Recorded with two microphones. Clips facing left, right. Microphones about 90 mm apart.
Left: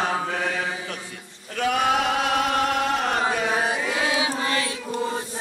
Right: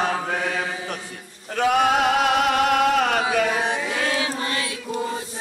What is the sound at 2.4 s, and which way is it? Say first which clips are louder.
Music: right 3 dB; 70° right (ahead or behind).